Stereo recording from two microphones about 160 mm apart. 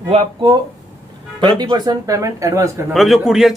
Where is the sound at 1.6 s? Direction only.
25° right (ahead or behind).